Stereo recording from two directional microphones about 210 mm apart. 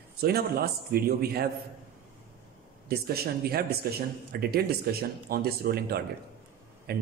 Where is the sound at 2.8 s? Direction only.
45° right (ahead or behind).